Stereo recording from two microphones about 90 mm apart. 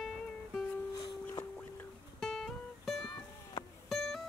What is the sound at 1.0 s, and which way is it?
Music, 65° left (ahead or behind).